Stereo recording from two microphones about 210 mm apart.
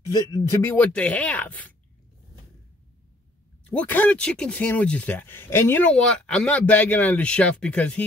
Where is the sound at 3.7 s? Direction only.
5° left (ahead or behind).